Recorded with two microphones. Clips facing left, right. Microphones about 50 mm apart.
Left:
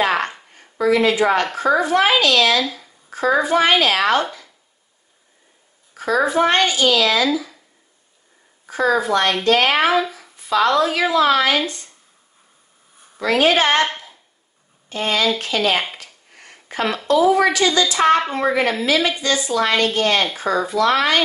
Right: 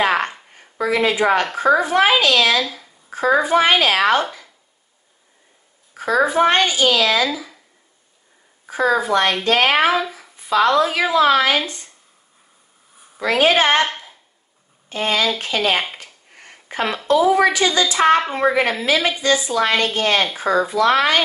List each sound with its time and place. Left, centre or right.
0.0 s a sound: centre
0.6 s a woman's voice: centre
2.6 s speech: centre
3.1 s a child's voice: centre
5.9 s speech: centre
8.6 s a woman's voice: centre
10.3 s a sound: right
10.8 s speech: centre
13.2 s speech: centre
14.9 s speech: centre
16.0 s a sound: right
17.3 s a woman's voice: right